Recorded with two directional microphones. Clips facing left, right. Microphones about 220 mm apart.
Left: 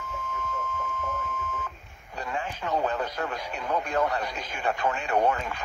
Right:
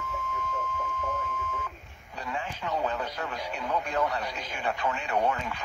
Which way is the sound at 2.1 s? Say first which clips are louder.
Left 2 dB; 50° left (ahead or behind).